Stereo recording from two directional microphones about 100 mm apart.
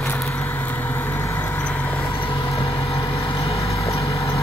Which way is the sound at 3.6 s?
30° left (ahead or behind).